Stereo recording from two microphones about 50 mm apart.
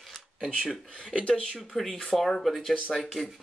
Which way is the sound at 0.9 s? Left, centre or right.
Centre.